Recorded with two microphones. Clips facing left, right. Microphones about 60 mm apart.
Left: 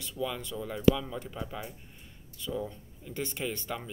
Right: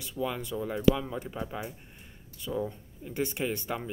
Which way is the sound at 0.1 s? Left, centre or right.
Right.